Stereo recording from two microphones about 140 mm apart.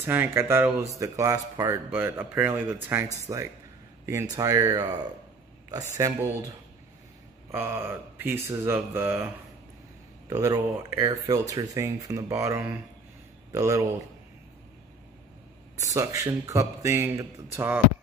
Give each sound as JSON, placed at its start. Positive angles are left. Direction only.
{"t": 0.0, "sound": "speech", "side_deg": -15}
{"t": 3.3, "sound": "speech", "side_deg": -25}
{"t": 7.5, "sound": "speech", "side_deg": -15}
{"t": 10.3, "sound": "speech", "side_deg": -25}
{"t": 15.8, "sound": "speech", "side_deg": -25}